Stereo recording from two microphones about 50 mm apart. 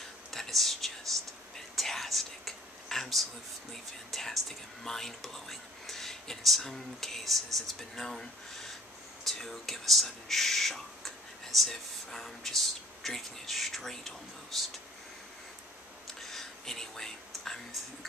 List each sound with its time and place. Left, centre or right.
0.3 s whispering: centre
3.7 s speech: centre
16.2 s whispering: centre